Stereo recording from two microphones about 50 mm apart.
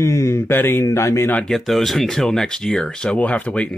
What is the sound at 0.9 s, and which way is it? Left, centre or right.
Speech, left.